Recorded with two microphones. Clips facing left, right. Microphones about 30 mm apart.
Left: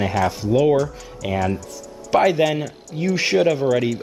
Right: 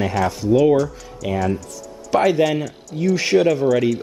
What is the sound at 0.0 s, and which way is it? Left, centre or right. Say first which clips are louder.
Speech: even; centre.